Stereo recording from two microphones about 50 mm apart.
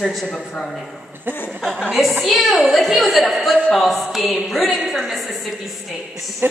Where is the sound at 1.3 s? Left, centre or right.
Right.